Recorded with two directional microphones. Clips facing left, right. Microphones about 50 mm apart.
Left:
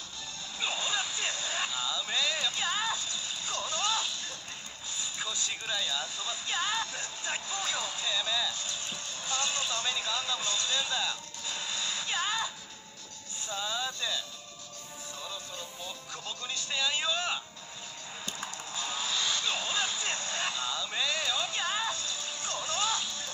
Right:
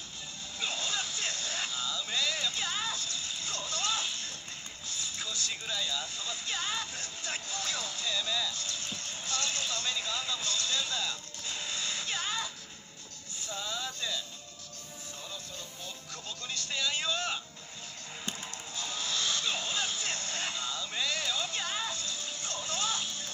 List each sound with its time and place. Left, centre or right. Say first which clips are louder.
0.6 s a sound: left 2 dB; centre
2.0 s music: left 1 dB; centre
4.8 s vehicle: left 2 dB; centre
5.5 s music: left 1 dB; centre
10.3 s speech: left 1 dB; left
12.0 s music: left 5 dB; centre
13.4 s vehicle: left 3 dB; left
16.1 s speech: left 1 dB; centre
17.0 s music: left 2 dB; centre
18.8 s a sound: left 2 dB; centre
19.4 s vehicle: left 1 dB; centre
20.0 s a sound: left 2 dB; left
20.9 s music: left 1 dB; centre